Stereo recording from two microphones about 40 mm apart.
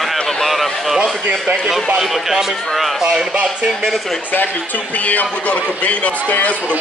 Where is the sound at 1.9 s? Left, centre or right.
Centre.